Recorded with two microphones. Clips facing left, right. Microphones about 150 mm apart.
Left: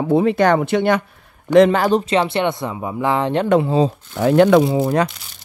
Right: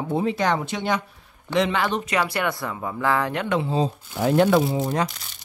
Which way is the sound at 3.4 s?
45° left (ahead or behind).